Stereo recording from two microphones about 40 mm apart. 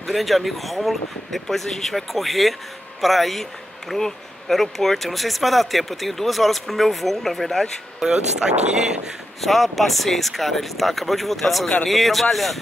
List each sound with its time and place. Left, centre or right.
0.0 s speech: centre
8.1 s speech: right
9.4 s speech: centre